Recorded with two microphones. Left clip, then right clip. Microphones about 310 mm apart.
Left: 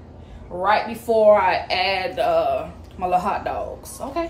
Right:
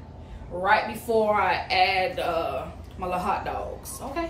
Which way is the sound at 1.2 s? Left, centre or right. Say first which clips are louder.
Left 8 dB; centre.